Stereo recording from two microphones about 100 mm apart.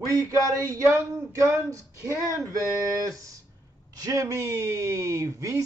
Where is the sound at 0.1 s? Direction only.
30° right (ahead or behind).